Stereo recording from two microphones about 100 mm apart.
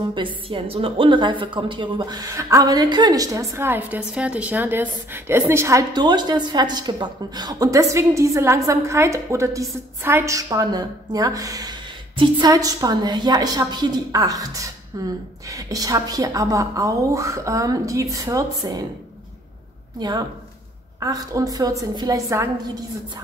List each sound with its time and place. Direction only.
0.1 s a woman's voice: 60° right (ahead or behind); by 5.9 s 30° right (ahead or behind)
5.9 s a woman's voice: 45° right (ahead or behind)
20.0 s a woman's voice: 45° right (ahead or behind)